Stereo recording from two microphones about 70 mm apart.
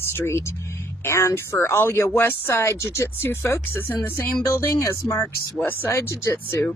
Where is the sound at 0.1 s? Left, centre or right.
Left.